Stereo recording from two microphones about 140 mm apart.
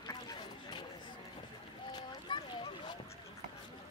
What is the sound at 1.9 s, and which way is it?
Rowboat, 35° left (ahead or behind).